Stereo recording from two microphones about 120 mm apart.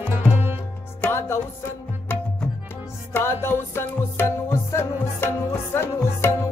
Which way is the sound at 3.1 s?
20° left (ahead or behind).